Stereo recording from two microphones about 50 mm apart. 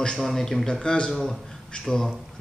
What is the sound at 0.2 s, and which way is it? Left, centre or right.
Speech, centre.